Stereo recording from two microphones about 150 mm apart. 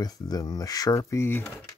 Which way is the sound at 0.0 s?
25° left (ahead or behind).